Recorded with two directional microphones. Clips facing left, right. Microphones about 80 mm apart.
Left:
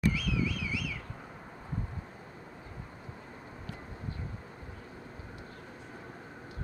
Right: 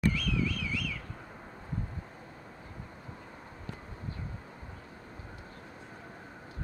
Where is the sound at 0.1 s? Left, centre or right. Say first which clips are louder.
Even; centre.